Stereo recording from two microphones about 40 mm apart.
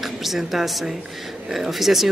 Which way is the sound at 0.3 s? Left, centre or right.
Centre.